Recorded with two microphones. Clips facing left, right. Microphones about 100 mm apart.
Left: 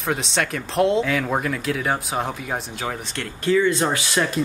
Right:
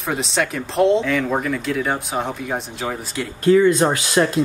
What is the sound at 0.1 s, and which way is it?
Speech, centre (ahead or behind).